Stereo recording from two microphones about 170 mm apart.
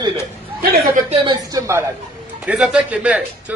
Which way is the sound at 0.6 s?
60° right (ahead or behind).